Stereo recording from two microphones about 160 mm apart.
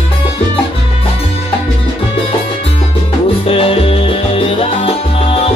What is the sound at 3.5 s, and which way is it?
Music, 35° left (ahead or behind).